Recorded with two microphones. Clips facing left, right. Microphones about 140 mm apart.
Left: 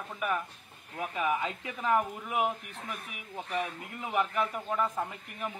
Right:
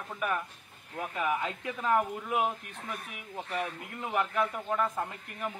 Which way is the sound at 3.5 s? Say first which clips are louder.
Left 1 dB; 10° left (ahead or behind).